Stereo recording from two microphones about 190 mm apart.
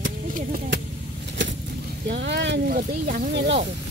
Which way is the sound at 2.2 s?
65° right (ahead or behind).